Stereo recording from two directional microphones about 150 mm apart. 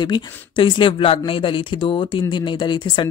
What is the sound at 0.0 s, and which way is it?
Speech, 30° left (ahead or behind).